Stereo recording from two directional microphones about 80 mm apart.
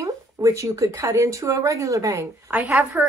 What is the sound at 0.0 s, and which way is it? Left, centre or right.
Speech, right.